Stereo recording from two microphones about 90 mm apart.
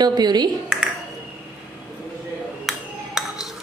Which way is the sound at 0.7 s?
5° right (ahead or behind).